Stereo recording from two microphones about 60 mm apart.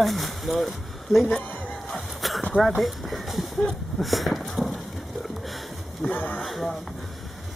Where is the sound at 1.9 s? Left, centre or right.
Centre.